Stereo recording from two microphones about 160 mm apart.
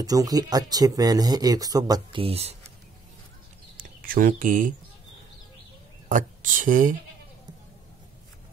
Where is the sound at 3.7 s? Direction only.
60° right (ahead or behind).